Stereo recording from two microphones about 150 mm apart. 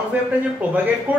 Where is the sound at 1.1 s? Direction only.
10° right (ahead or behind).